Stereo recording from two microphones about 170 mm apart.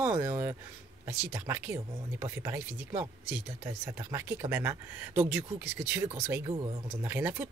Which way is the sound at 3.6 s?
15° right (ahead or behind).